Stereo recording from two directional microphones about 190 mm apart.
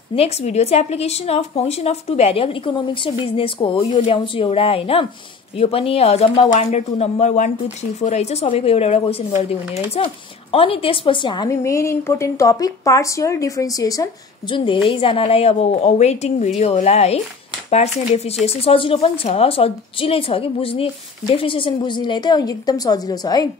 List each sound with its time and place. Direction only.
0.1 s a woman's voice: 35° left (ahead or behind)